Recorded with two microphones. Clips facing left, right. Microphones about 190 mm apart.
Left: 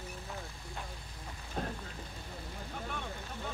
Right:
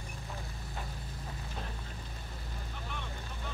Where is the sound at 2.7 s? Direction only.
45° left (ahead or behind).